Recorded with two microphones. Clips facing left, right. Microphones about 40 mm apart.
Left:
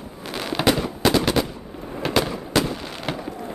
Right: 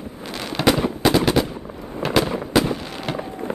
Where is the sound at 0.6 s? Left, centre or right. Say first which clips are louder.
Right 2 dB; centre.